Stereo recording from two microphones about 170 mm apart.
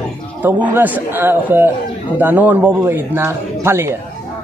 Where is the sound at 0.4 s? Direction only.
10° right (ahead or behind).